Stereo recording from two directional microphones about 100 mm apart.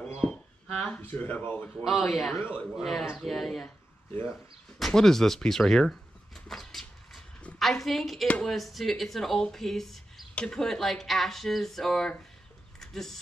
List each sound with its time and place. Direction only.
0.8 s speech: 15° left (ahead or behind)
1.9 s speech: centre (ahead or behind)
2.3 s speech: 20° left (ahead or behind)
2.6 s speech: centre (ahead or behind)
4.1 s speech: 25° left (ahead or behind)
4.7 s a sound: 5° left (ahead or behind)
7.5 s a woman's voice: centre (ahead or behind)